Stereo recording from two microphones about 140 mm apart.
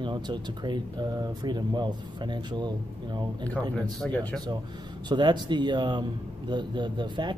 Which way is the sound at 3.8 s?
5° left (ahead or behind).